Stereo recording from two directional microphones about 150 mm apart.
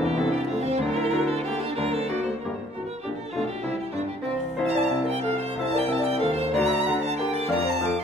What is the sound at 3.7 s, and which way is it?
Music, 45° right (ahead or behind).